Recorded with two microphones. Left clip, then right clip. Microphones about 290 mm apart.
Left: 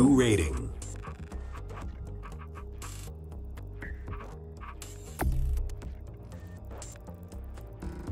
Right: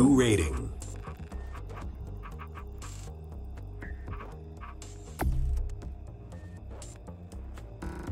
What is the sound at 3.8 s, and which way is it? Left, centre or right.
Throbbing, centre.